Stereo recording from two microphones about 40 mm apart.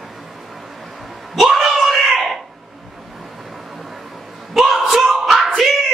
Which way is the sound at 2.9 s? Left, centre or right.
Centre.